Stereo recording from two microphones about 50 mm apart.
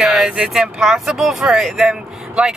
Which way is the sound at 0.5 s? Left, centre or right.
Centre.